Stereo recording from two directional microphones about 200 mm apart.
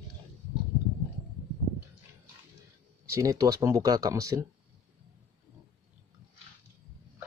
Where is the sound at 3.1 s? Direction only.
15° right (ahead or behind).